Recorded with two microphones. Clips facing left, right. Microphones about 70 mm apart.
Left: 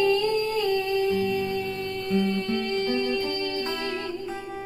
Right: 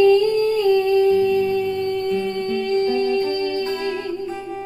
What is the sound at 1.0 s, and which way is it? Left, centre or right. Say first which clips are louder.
Music: right 8 dB; left.